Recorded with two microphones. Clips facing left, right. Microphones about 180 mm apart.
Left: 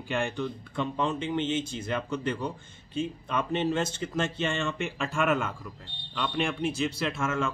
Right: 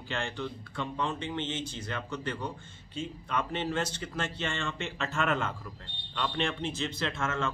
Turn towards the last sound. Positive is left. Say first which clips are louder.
# left 3 dB
turn(degrees=10)  # may be behind; listen again after turning